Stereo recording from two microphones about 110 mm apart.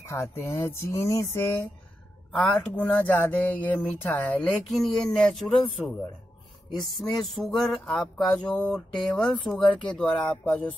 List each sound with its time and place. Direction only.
0.0 s music: 25° left (ahead or behind)
2.3 s speech: 15° left (ahead or behind)
6.7 s a sound: centre (ahead or behind)
9.6 s speech: 10° left (ahead or behind)